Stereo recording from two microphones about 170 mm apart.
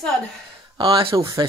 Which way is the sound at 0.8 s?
30° right (ahead or behind).